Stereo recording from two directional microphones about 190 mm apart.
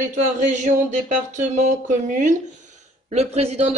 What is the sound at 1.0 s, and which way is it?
A man's voice, 40° right (ahead or behind).